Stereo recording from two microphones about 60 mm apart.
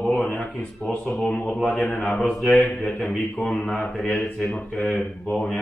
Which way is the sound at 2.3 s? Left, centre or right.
Centre.